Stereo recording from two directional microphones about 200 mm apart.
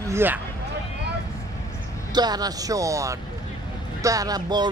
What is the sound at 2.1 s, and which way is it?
Speech, 20° right (ahead or behind).